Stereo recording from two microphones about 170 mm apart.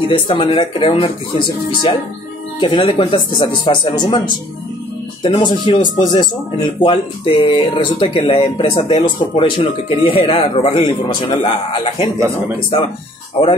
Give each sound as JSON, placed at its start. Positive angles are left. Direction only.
{"t": 0.1, "sound": "speech", "side_deg": 30}
{"t": 5.2, "sound": "speech", "side_deg": 25}